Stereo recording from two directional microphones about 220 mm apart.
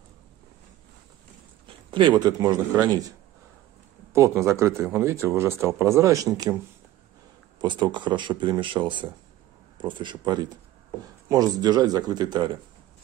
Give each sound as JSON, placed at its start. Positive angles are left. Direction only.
{"t": 1.7, "sound": "speech", "side_deg": -20}
{"t": 7.6, "sound": "speech", "side_deg": -20}